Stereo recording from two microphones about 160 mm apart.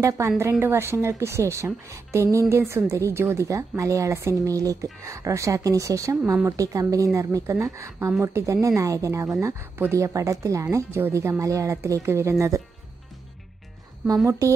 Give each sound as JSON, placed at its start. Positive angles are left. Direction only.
{"t": 0.4, "sound": "a woman's voice", "side_deg": -15}
{"t": 14.0, "sound": "speech", "side_deg": -20}